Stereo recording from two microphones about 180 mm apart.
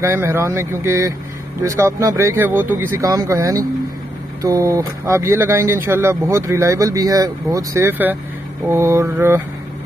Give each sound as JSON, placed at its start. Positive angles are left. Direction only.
{"t": 0.0, "sound": "speech", "side_deg": -15}